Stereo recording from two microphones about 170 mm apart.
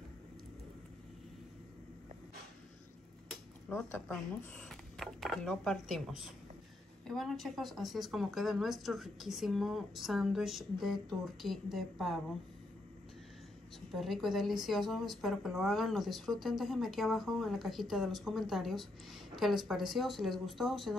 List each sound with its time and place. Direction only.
3.3 s a sound: centre (ahead or behind)
4.1 s a woman's voice: 5° left (ahead or behind)
13.9 s a woman's voice: centre (ahead or behind)